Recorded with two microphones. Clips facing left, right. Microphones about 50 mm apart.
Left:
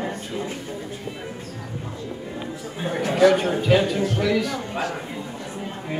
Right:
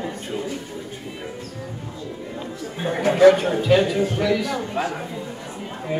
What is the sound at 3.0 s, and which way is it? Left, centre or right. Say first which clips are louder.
Speech: right 4 dB; right.